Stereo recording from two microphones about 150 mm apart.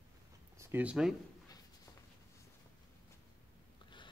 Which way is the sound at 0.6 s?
15° right (ahead or behind).